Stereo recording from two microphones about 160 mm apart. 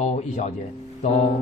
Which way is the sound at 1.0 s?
45° left (ahead or behind).